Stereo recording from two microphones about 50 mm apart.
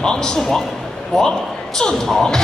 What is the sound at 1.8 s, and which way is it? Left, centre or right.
Speech, centre.